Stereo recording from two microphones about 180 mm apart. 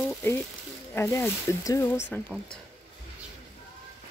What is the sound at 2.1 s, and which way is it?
Speech, 5° left (ahead or behind).